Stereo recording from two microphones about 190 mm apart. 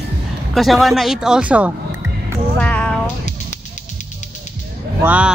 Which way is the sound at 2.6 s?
5° left (ahead or behind).